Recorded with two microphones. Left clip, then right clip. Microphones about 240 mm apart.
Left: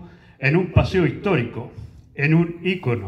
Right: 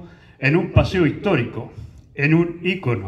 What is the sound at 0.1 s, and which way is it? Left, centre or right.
A man's voice, right.